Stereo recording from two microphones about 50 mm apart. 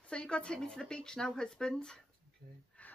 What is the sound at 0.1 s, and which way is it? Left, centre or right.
Speech, centre.